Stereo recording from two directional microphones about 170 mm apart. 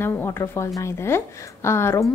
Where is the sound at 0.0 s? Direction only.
15° left (ahead or behind).